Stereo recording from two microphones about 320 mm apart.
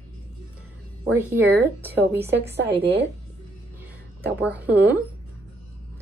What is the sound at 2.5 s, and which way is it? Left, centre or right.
Speech, right.